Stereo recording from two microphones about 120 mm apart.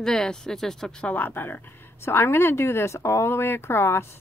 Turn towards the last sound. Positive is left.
turn(degrees=20)  # may be behind; listen again after turning